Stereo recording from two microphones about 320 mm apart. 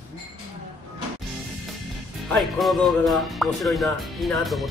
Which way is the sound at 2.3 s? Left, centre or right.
Centre.